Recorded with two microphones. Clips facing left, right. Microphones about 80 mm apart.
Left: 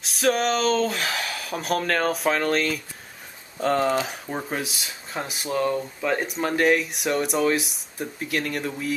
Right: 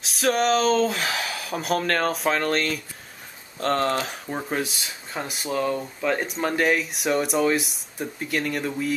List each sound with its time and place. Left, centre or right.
0.0 s speech: centre